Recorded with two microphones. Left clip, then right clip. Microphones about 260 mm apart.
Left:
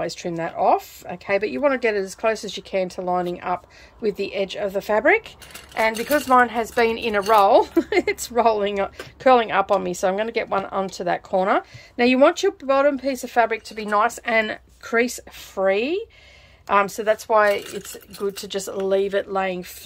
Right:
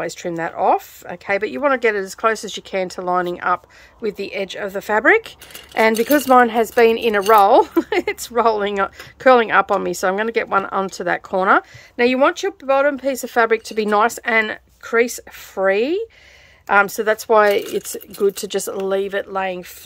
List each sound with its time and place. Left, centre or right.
0.0 s speech: centre
12.0 s speech: centre